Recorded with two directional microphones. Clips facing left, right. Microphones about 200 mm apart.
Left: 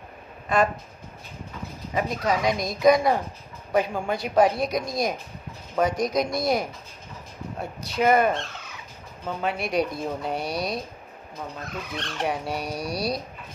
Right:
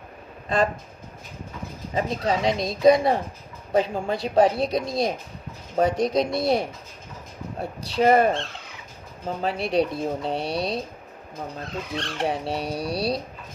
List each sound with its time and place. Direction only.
2.0 s speech: 30° right (ahead or behind)
7.9 s speech: 35° right (ahead or behind)